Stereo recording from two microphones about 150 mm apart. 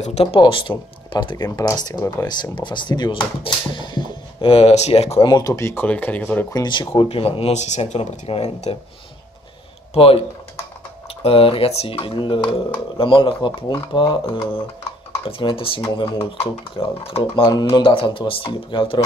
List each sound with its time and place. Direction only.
0.0 s speech: 40° left (ahead or behind)
5.2 s speech: 25° left (ahead or behind)
6.5 s speech: 30° left (ahead or behind)
9.9 s speech: 40° left (ahead or behind)
11.2 s speech: 40° left (ahead or behind)
17.5 s speech: 30° left (ahead or behind)